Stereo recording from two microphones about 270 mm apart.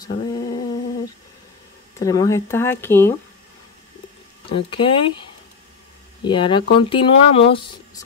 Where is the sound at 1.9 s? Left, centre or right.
Centre.